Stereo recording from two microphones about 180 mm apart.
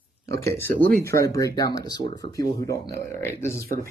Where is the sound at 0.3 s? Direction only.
15° left (ahead or behind).